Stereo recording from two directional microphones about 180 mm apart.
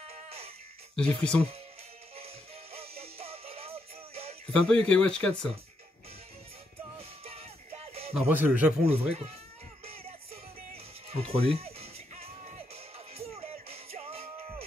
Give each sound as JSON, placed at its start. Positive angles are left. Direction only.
{"t": 0.1, "sound": "music", "side_deg": -35}
{"t": 0.9, "sound": "speech", "side_deg": 5}
{"t": 2.1, "sound": "music", "side_deg": -35}
{"t": 4.5, "sound": "speech", "side_deg": 5}
{"t": 7.0, "sound": "music", "side_deg": -35}
{"t": 8.3, "sound": "speech", "side_deg": -10}
{"t": 8.8, "sound": "speech", "side_deg": -35}
{"t": 9.8, "sound": "music", "side_deg": -35}